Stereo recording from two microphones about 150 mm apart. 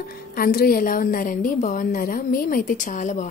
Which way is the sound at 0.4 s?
85° left.